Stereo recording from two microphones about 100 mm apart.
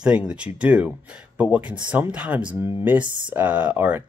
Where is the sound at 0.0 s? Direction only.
10° right (ahead or behind).